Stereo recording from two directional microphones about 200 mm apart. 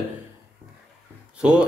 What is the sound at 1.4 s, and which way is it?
Speech, 5° right (ahead or behind).